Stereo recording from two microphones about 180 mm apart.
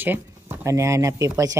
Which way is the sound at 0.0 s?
10° right (ahead or behind).